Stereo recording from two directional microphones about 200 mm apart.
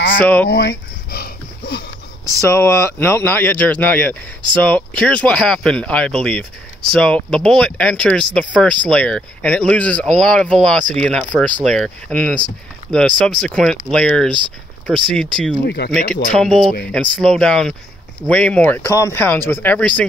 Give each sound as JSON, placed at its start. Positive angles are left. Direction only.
{"t": 0.2, "sound": "speech", "side_deg": 10}
{"t": 0.5, "sound": "a sound", "side_deg": 60}
{"t": 2.5, "sound": "speech", "side_deg": 15}
{"t": 15.6, "sound": "speech", "side_deg": 55}
{"t": 15.9, "sound": "speech", "side_deg": 5}